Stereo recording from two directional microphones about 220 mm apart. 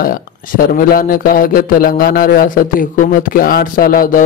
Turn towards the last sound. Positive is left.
turn(degrees=40)  # may be behind; listen again after turning